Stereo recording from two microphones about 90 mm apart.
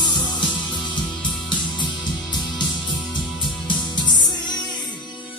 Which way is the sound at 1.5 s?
55° left (ahead or behind).